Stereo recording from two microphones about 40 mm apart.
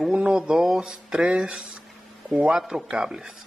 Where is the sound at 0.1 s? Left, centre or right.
Right.